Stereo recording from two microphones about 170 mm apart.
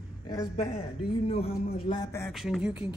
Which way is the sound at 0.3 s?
20° left (ahead or behind).